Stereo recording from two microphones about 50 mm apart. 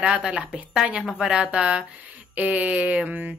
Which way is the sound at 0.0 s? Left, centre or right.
Right.